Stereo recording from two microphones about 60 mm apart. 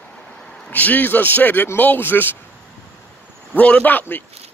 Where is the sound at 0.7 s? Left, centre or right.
Left.